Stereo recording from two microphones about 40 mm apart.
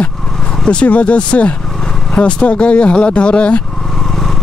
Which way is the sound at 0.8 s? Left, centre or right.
Left.